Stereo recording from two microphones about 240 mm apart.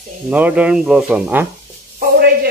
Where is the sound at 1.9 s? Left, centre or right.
Right.